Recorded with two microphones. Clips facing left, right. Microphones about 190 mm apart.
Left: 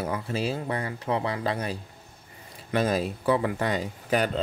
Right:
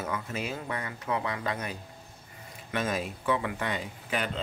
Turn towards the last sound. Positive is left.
turn(degrees=40)  # may be behind; listen again after turning